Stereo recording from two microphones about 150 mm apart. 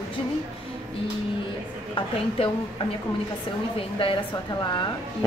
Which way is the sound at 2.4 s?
40° left (ahead or behind).